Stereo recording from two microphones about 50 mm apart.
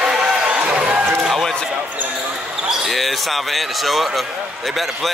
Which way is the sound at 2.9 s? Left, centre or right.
Centre.